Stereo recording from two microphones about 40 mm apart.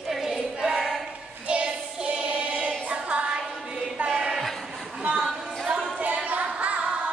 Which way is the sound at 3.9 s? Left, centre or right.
Right.